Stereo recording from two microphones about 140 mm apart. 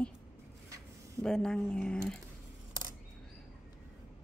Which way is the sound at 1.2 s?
5° left (ahead or behind).